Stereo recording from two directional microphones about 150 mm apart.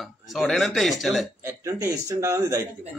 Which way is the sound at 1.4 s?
20° right (ahead or behind).